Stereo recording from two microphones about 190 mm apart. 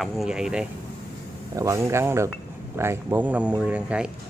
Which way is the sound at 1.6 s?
15° right (ahead or behind).